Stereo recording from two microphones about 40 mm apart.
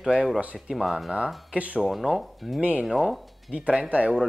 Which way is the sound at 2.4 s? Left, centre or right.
Centre.